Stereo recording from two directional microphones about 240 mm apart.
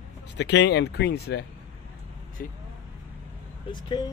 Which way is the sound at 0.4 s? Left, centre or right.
Left.